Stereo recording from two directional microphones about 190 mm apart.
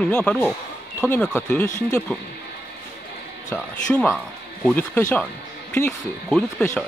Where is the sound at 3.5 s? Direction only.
5° left (ahead or behind).